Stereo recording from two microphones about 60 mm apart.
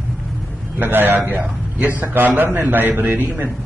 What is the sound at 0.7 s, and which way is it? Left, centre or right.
A man's voice, right.